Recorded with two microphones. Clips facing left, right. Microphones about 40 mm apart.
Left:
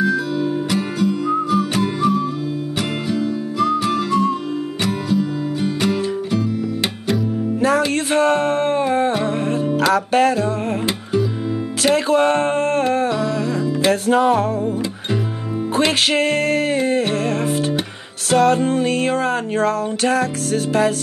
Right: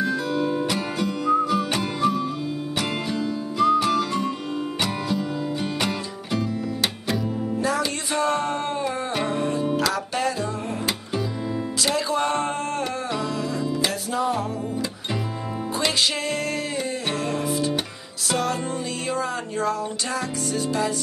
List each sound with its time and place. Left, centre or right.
0.0 s music: centre
7.6 s music: left
11.8 s speech: left
13.2 s music: left
14.0 s music: left
15.7 s music: left
18.3 s music: left